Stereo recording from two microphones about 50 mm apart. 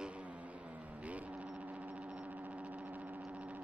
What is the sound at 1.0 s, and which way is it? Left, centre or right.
Music, right.